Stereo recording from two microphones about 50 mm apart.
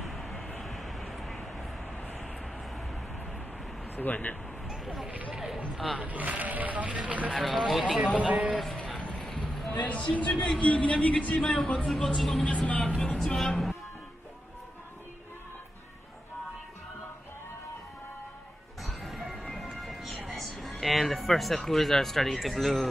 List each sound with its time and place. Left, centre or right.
0.0 s vehicle: centre
3.9 s speech: left
4.6 s a sound: centre
5.9 s speech: right
7.3 s speech: centre
8.2 s speech: right
9.0 s a sound: centre
9.7 s speech: left
12.2 s speech: centre
12.4 s speech: left
12.8 s music: centre
18.8 s music: centre
20.2 s a sound: centre
20.8 s speech: centre